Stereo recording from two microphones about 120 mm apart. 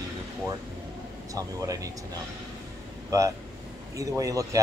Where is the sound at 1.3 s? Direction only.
30° right (ahead or behind).